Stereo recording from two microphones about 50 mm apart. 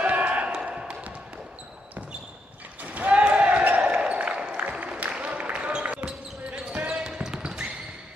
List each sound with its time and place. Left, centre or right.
0.0 s basketball bounce: right
2.8 s basketball bounce: right
3.8 s a sound: centre
6.0 s basketball bounce: centre